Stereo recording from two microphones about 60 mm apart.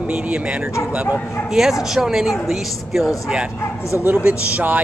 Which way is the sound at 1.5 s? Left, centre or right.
Centre.